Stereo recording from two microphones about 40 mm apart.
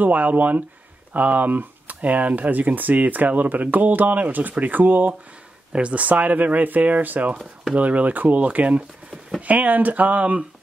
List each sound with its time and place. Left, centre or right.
0.0 s speech: right
5.7 s speech: right